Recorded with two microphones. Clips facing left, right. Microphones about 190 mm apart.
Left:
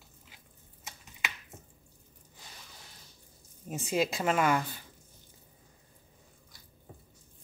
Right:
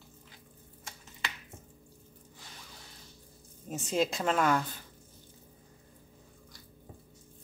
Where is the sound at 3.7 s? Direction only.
10° left (ahead or behind).